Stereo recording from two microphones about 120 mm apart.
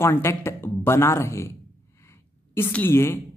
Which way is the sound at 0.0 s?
20° left (ahead or behind).